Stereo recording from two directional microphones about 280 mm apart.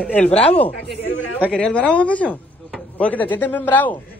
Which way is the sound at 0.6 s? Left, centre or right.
Centre.